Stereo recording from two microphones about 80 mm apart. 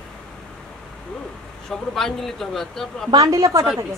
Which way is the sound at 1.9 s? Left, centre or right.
Centre.